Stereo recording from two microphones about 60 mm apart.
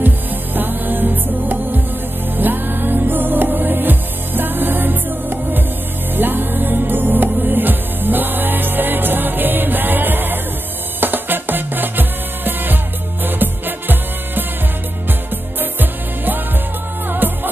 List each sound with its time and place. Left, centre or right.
0.6 s music: right
15.6 s music: right